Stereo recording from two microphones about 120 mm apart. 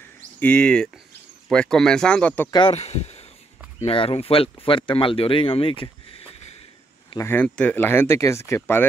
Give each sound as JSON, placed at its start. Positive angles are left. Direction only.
{"t": 0.4, "sound": "speech", "side_deg": 10}
{"t": 2.7, "sound": "speech", "side_deg": 60}
{"t": 7.2, "sound": "speech", "side_deg": 20}